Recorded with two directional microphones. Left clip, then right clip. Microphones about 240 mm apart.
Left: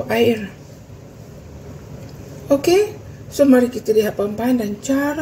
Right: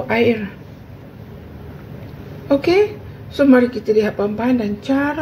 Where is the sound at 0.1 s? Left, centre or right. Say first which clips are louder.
Even; centre.